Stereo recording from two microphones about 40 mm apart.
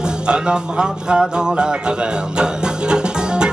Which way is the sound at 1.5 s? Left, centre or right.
Right.